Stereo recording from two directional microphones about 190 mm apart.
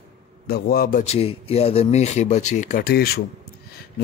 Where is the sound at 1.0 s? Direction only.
30° left (ahead or behind).